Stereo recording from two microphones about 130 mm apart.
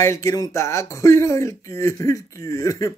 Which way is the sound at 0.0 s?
25° left (ahead or behind).